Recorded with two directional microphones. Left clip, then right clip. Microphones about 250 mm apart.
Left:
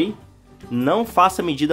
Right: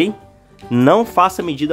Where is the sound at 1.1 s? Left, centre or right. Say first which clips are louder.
Right 2 dB; centre.